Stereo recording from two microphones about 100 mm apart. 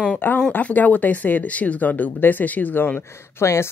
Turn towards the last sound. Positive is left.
turn(degrees=25)  # may be behind; listen again after turning